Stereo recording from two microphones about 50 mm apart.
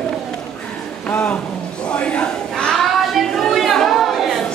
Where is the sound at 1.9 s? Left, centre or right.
Left.